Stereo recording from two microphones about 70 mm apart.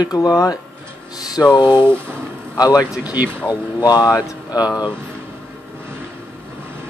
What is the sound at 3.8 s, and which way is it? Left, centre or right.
Speech, left.